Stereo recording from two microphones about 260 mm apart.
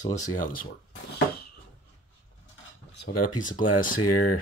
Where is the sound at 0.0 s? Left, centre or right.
Left.